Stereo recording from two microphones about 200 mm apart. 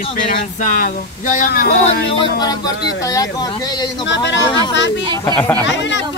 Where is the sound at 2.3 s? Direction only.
20° left (ahead or behind).